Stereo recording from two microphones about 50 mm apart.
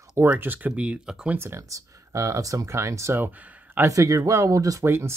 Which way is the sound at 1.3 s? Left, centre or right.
Right.